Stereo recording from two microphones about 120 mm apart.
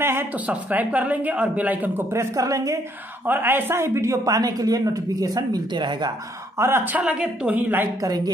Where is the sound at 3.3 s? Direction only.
15° right (ahead or behind); by 6.2 s 40° right (ahead or behind).